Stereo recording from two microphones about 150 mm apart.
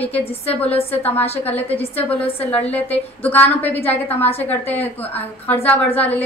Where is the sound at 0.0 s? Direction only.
40° left (ahead or behind).